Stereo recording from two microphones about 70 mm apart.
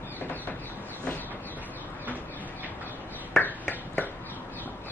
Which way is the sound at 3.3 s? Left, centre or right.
Left.